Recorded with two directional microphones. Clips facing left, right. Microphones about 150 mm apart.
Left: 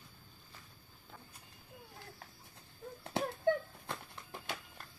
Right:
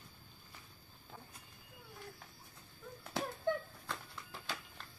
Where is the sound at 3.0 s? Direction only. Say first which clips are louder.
Left 4 dB; 25° left (ahead or behind).